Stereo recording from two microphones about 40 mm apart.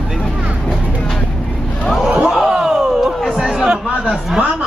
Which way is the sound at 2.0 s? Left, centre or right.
Centre.